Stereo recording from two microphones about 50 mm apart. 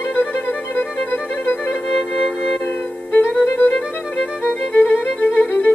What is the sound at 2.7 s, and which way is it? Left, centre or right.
Music, left.